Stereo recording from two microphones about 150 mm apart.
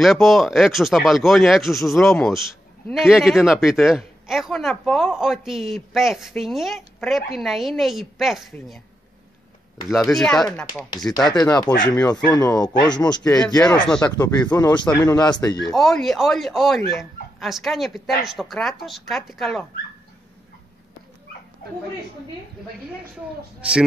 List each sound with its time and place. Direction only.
0.0 s speech: centre (ahead or behind)
10.0 s speech: 5° left (ahead or behind)
11.3 s speech: 25° left (ahead or behind)
13.8 s speech: 5° left (ahead or behind)
15.0 s speech: 25° left (ahead or behind)
15.7 s speech: centre (ahead or behind)